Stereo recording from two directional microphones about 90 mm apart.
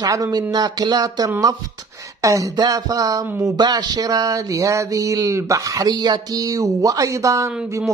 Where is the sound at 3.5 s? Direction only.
50° right (ahead or behind); by 7.5 s 35° right (ahead or behind).